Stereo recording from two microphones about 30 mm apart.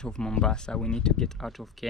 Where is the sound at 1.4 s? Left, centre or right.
Centre.